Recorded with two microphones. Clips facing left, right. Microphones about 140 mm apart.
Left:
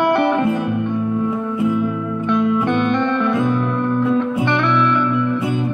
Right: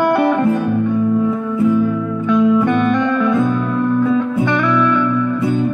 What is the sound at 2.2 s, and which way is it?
Music, centre (ahead or behind).